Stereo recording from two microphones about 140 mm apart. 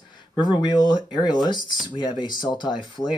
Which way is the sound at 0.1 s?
30° left (ahead or behind).